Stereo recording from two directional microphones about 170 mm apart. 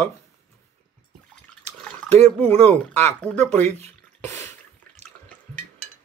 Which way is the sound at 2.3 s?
10° left (ahead or behind).